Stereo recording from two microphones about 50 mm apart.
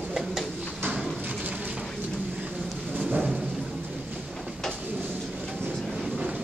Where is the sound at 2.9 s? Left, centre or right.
Right.